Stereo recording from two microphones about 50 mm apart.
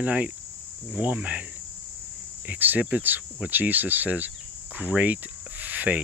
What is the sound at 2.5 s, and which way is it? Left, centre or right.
Cricket, right.